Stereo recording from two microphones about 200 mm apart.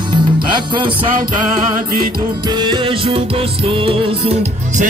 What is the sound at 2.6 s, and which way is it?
Music, 25° right (ahead or behind).